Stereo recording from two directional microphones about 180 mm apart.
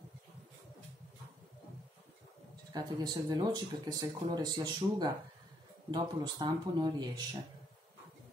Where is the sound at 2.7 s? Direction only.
20° right (ahead or behind).